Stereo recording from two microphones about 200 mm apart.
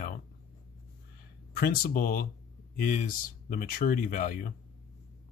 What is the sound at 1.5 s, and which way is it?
Speech, 45° left (ahead or behind).